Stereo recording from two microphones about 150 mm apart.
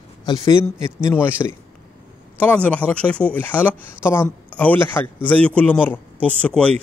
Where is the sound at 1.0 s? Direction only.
15° left (ahead or behind).